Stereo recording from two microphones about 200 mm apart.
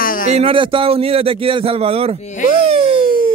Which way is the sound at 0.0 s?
45° left (ahead or behind).